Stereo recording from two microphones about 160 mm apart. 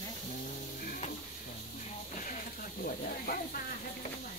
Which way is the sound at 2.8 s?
60° left (ahead or behind).